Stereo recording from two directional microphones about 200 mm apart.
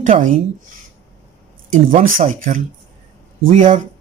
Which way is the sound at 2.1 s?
40° right (ahead or behind).